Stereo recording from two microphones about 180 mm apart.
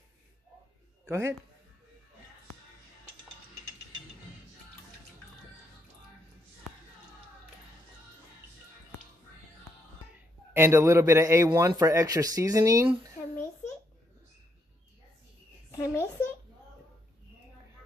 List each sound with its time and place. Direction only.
1.0 s a man's voice: 15° right (ahead or behind)
10.5 s a man's voice: 15° right (ahead or behind)
15.7 s a sound: 20° left (ahead or behind)